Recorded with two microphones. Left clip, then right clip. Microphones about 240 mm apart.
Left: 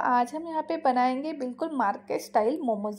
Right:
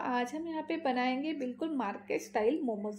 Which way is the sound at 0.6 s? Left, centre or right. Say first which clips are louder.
Left 9 dB; left.